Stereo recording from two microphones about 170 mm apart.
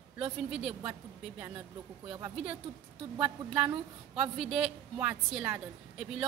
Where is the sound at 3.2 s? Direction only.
5° right (ahead or behind).